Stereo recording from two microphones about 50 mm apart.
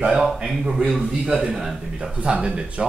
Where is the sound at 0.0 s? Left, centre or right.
Centre.